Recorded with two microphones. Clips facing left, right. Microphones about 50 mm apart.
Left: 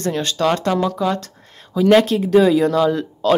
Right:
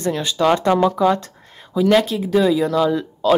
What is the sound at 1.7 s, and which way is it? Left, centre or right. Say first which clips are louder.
Speech: left 2 dB; centre.